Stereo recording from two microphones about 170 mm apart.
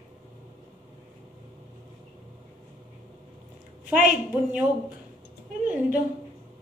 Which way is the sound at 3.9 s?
50° right (ahead or behind).